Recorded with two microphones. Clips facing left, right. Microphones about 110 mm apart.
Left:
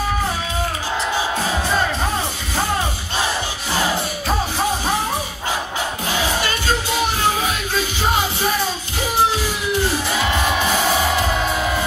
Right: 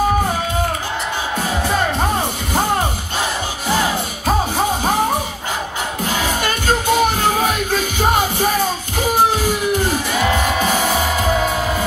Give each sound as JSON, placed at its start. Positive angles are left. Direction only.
{"t": 6.0, "sound": "music", "side_deg": -50}